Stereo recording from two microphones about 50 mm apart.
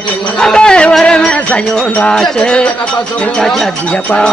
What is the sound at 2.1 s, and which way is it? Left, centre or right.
Speech, centre.